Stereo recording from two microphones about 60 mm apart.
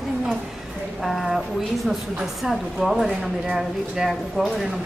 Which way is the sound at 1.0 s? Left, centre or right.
Centre.